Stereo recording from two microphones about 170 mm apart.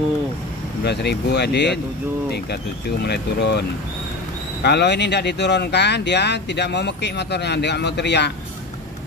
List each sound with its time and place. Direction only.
0.8 s speech: 80° left
3.0 s speech: 80° left
4.6 s speech: 80° left